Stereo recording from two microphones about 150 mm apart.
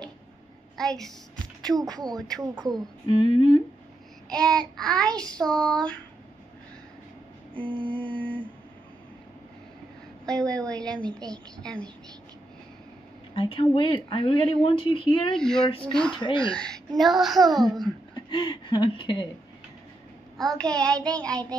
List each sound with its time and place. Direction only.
0.7 s child singing: centre (ahead or behind)
1.7 s speech: 25° right (ahead or behind)
3.1 s speech: 35° left (ahead or behind)
4.3 s child singing: 5° left (ahead or behind)
7.5 s a sound: 35° right (ahead or behind)
10.2 s child singing: 5° left (ahead or behind)
13.3 s speech: 35° left (ahead or behind)
15.3 s child singing: 5° left (ahead or behind)
16.2 s speech: 35° left (ahead or behind)
16.4 s child singing: 5° left (ahead or behind)
18.1 s speech: 30° left (ahead or behind)
20.3 s child singing: 5° left (ahead or behind)